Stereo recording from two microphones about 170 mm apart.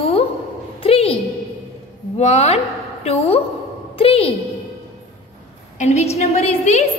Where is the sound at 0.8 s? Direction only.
35° left (ahead or behind).